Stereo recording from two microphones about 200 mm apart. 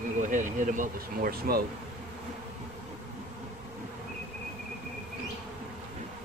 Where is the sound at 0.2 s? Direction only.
40° right (ahead or behind).